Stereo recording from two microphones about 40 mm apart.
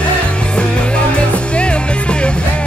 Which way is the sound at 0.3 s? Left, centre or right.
Left.